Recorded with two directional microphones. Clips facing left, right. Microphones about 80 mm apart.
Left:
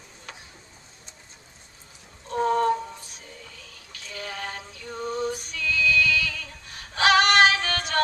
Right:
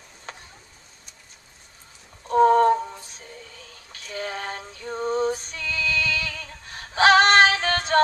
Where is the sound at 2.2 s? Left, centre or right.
Right.